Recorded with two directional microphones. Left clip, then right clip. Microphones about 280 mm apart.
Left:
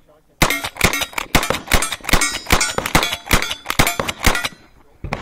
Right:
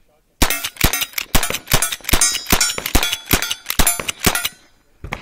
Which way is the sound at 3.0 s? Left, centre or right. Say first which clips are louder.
Left 1 dB; centre.